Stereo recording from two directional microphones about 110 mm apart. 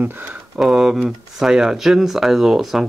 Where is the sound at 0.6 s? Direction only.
5° right (ahead or behind).